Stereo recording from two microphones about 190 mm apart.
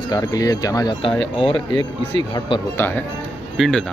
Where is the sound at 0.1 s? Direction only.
20° left (ahead or behind).